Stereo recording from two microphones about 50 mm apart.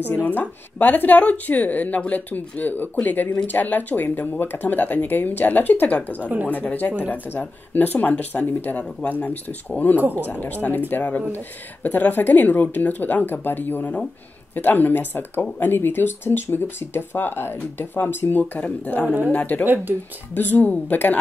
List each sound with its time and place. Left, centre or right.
0.1 s a woman's voice: left
6.2 s speech: right
6.5 s a woman's voice: left
19.0 s speech: right
19.3 s a woman's voice: left
19.6 s speech: right
20.3 s a woman's voice: left